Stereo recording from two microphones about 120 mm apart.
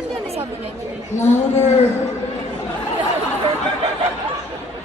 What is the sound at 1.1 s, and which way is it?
Speech, 85° left.